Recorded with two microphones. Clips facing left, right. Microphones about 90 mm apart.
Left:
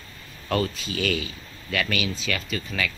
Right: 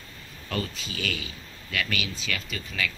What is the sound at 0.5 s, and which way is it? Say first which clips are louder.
Speech: left 7 dB; 80° left.